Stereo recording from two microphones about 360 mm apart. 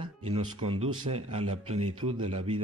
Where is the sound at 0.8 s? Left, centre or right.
Right.